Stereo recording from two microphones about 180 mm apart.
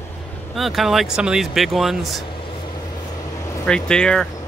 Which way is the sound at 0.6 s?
Centre (ahead or behind).